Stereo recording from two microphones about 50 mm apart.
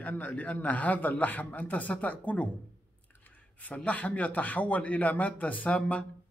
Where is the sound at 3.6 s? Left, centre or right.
Left.